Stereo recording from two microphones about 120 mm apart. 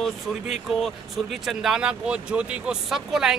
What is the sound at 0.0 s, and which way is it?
Speech, centre (ahead or behind).